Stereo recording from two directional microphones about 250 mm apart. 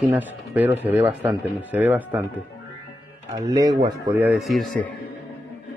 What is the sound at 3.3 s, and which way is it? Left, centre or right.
Speech, centre.